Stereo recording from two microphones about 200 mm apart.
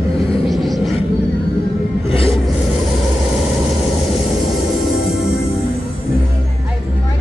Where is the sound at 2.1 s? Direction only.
30° left (ahead or behind).